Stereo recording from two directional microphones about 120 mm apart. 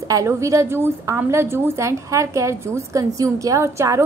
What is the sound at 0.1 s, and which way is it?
A woman's voice, 25° right (ahead or behind).